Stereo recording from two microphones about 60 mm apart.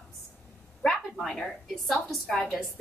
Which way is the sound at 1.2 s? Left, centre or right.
Centre.